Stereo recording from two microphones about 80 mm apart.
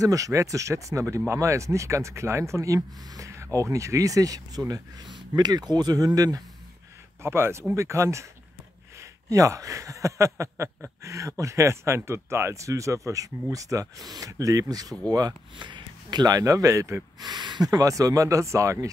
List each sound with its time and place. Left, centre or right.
0.0 s speech: right
7.2 s speech: right
15.5 s speech: right
17.2 s speech: right
17.6 s speech: right